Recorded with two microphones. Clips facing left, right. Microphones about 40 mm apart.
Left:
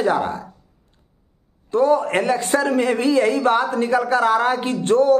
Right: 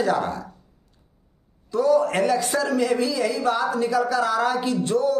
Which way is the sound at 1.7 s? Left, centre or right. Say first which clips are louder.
Left 2 dB; left.